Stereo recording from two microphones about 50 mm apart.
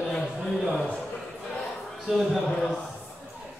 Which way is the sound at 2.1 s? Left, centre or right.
Centre.